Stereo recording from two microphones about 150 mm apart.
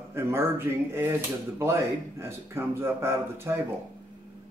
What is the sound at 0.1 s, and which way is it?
Speech, 15° right (ahead or behind).